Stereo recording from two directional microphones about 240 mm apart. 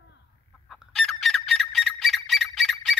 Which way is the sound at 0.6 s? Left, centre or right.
Centre.